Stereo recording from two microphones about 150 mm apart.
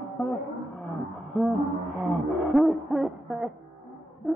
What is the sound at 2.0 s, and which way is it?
Wail, centre (ahead or behind).